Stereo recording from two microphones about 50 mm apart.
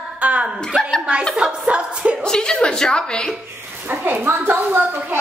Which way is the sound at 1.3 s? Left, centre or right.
Right.